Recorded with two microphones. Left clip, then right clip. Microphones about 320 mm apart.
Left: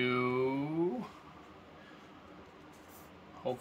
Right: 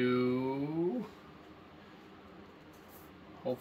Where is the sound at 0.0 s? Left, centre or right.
Centre.